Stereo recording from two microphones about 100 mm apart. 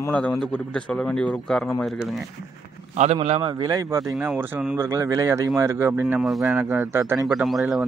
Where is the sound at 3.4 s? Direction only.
50° right (ahead or behind).